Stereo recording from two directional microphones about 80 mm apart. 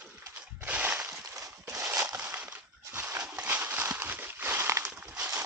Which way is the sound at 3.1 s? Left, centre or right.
Centre.